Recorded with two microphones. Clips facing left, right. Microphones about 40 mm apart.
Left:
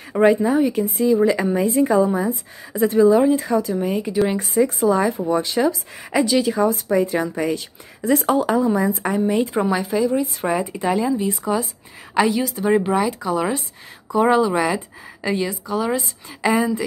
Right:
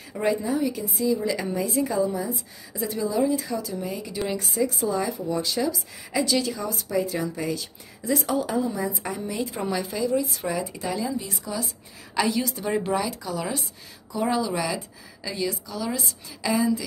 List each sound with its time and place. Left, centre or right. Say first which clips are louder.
0.2 s speech: left 8 dB; left
4.3 s speech: left 7 dB; left
6.2 s speech: left 6 dB; centre
6.5 s speech: left 9 dB; left; by 10.1 s centre
10.1 s speech: left 5 dB; left
12.3 s a woman's voice: left 7 dB; centre; by 16.8 s left